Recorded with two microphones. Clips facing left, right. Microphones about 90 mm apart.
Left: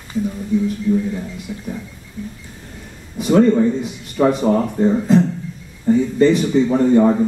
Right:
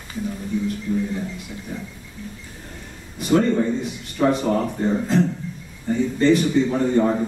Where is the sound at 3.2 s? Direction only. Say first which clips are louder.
Left 5 dB; centre (ahead or behind).